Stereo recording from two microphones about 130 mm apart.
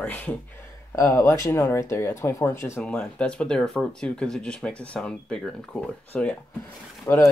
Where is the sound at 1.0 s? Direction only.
20° left (ahead or behind).